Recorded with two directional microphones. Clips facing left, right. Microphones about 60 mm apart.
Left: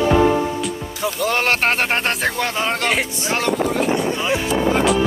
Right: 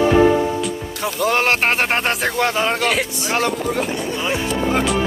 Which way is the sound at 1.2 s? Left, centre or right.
Centre.